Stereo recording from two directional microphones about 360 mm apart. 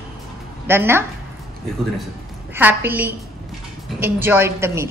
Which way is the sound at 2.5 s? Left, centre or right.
Centre.